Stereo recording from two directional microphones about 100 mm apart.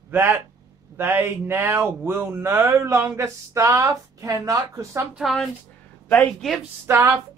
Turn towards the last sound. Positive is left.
turn(degrees=-20)  # may be behind; listen again after turning